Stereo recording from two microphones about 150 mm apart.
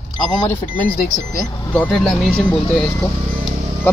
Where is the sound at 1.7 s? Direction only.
Centre (ahead or behind).